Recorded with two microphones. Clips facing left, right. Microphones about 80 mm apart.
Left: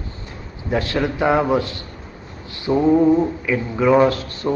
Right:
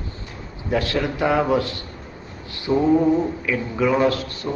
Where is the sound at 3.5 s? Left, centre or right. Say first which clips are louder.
Left 3 dB; left.